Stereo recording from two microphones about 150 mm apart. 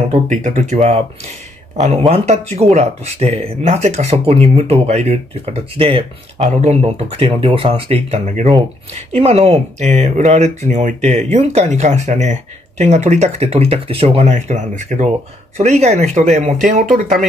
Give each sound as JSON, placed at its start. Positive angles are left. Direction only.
{"t": 0.1, "sound": "speech", "side_deg": -55}